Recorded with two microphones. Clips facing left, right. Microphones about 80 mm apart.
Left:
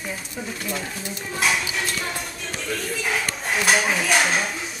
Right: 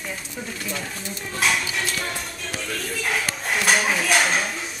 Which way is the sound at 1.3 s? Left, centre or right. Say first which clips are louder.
Even; centre.